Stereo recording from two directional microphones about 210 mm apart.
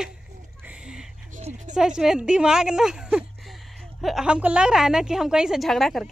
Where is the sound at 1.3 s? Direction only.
35° right (ahead or behind).